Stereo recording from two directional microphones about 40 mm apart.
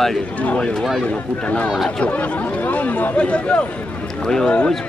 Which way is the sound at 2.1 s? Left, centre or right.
Left.